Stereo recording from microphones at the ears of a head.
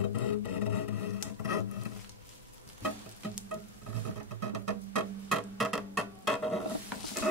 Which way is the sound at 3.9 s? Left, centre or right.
Right.